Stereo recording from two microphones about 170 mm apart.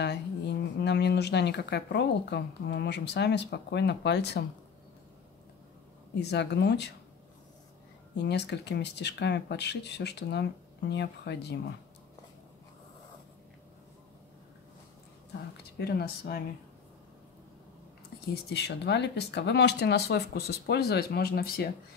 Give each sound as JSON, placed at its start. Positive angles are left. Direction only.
{"t": 0.0, "sound": "speech", "side_deg": 80}
{"t": 6.1, "sound": "speech", "side_deg": 90}
{"t": 8.2, "sound": "speech", "side_deg": 85}
{"t": 15.8, "sound": "speech", "side_deg": 70}
{"t": 18.5, "sound": "speech", "side_deg": 85}